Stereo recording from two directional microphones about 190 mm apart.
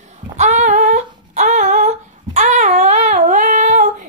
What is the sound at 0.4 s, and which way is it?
Humming, 40° right (ahead or behind).